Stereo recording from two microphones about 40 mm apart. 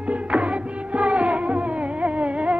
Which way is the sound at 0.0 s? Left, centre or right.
Right.